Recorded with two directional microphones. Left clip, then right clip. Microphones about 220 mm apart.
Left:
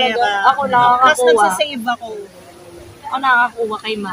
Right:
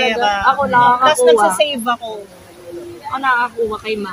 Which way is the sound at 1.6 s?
25° right (ahead or behind).